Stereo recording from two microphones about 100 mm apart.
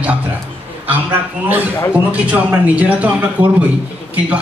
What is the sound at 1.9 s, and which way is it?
A man's voice, 15° right (ahead or behind).